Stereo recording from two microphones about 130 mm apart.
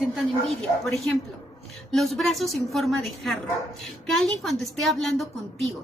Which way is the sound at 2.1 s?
Centre (ahead or behind).